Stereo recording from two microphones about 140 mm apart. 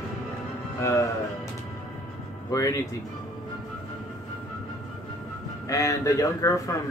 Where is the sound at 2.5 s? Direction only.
25° left (ahead or behind).